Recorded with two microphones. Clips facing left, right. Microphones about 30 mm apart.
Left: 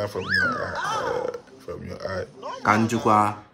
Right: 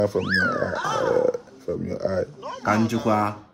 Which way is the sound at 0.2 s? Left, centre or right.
Centre.